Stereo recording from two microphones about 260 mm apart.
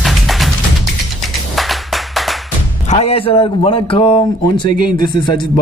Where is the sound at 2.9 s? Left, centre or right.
Left.